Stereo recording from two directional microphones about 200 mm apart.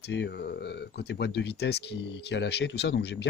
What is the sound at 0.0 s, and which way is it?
Speech, 60° left (ahead or behind).